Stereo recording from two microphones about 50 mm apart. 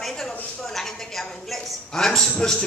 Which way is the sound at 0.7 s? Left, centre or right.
Centre.